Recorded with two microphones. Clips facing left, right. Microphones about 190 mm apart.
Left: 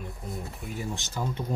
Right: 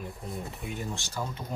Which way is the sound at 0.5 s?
Centre (ahead or behind).